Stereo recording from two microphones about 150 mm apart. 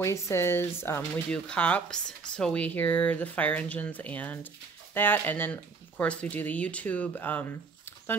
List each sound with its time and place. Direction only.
0.0 s speech: 20° left (ahead or behind)